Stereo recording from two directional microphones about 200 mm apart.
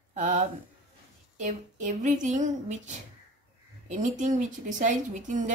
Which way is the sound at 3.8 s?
40° right (ahead or behind).